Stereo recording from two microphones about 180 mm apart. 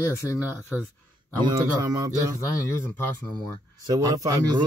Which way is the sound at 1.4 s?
20° right (ahead or behind).